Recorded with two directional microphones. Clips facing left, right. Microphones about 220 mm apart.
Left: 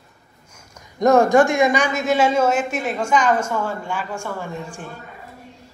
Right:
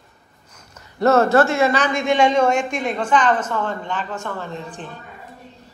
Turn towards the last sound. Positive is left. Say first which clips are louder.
# even
turn(degrees=10)  # may be behind; listen again after turning